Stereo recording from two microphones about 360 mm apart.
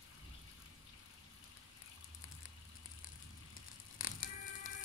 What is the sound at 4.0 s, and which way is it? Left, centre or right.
Music, left.